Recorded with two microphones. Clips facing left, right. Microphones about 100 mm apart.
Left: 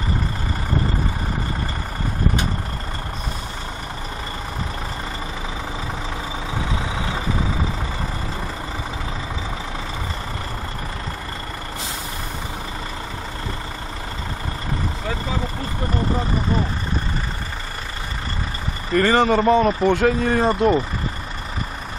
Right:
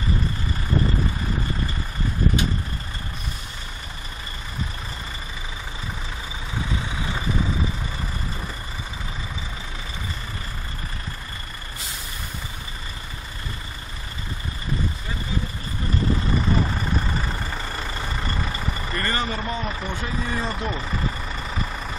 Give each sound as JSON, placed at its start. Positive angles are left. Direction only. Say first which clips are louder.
{"t": 18.9, "sound": "speech", "louder": "left 12 dB", "side_deg": 90}